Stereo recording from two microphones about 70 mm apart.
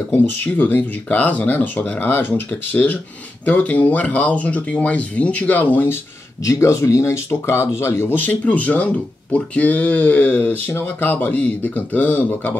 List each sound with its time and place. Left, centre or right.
0.4 s speech: left
6.4 s speech: left